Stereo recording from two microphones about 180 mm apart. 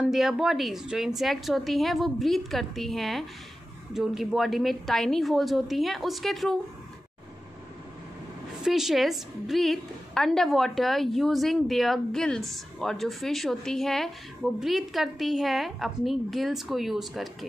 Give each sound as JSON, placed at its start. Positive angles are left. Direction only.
{"t": 0.1, "sound": "a woman's voice", "side_deg": 0}
{"t": 8.6, "sound": "a woman's voice", "side_deg": 0}